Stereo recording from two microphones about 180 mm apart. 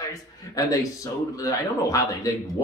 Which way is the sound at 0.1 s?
20° left (ahead or behind).